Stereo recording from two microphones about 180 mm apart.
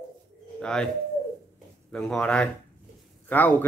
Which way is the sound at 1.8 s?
5° left (ahead or behind).